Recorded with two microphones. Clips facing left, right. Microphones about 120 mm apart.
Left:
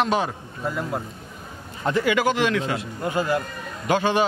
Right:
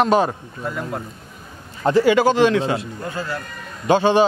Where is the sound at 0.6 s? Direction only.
Centre (ahead or behind).